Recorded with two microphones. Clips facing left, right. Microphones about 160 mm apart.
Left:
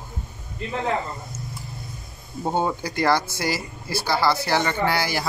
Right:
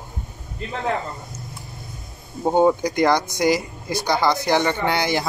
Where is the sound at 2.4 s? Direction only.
15° right (ahead or behind).